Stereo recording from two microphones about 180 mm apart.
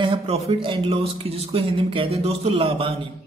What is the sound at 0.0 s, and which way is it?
A man's voice, 30° right (ahead or behind).